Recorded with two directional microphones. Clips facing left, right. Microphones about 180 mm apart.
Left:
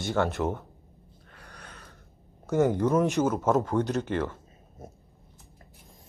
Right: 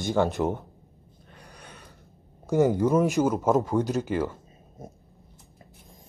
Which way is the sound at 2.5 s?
10° right (ahead or behind).